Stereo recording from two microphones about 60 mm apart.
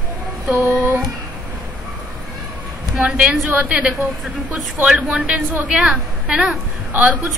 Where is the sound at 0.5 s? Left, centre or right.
Right.